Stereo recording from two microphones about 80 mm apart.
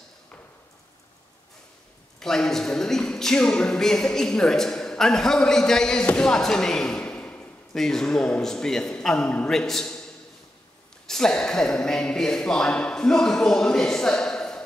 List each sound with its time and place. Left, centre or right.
2.1 s speech: centre
11.1 s speech: centre